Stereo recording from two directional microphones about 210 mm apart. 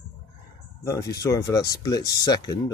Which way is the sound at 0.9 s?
15° left (ahead or behind).